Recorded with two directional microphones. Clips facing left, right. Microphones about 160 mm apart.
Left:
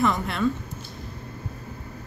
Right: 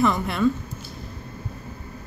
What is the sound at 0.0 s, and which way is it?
Speech, 5° right (ahead or behind).